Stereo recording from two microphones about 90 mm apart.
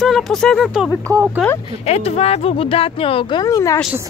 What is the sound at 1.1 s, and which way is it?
Speech, 40° right (ahead or behind).